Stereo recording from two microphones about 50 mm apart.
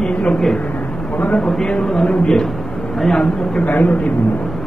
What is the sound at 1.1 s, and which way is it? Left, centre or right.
Speech, left.